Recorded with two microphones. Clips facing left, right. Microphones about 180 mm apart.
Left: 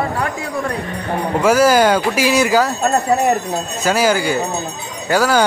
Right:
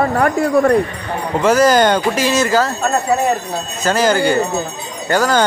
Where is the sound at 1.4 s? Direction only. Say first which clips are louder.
Right 1 dB; 10° left (ahead or behind).